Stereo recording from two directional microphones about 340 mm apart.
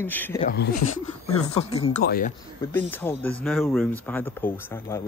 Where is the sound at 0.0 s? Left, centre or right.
Centre.